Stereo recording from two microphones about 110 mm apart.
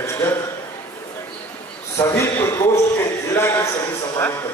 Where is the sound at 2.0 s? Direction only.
20° left (ahead or behind).